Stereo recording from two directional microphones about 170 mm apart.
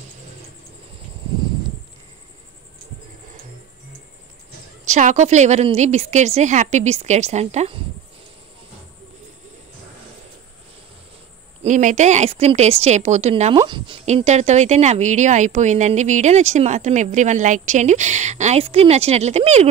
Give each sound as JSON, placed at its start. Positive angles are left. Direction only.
{"t": 4.8, "sound": "speech", "side_deg": -45}
{"t": 11.6, "sound": "speech", "side_deg": -45}
{"t": 14.0, "sound": "speech", "side_deg": -40}